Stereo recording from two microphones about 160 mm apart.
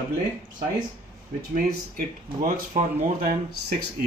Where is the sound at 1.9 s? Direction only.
55° right (ahead or behind).